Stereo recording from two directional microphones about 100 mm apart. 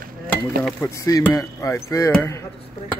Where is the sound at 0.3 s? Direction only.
10° left (ahead or behind).